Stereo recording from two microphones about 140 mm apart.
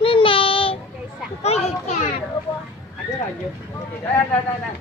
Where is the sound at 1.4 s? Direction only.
50° left (ahead or behind).